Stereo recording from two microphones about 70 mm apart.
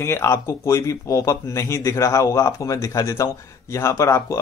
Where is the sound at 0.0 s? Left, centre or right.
Left.